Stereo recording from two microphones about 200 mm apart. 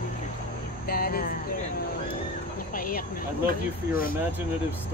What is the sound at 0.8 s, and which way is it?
Speech, 50° left (ahead or behind).